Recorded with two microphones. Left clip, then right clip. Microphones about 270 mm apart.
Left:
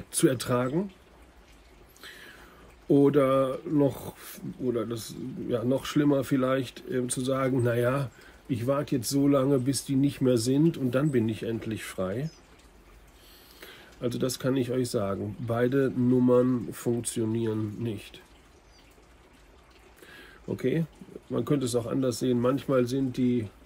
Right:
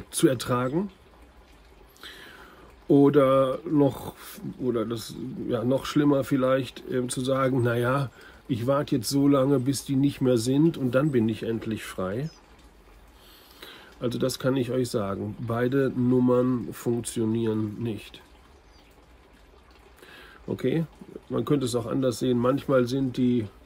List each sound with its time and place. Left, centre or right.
0.1 s speech: centre
2.0 s a sound: centre
2.9 s speech: centre
13.6 s speech: centre
20.1 s a sound: centre
21.3 s speech: centre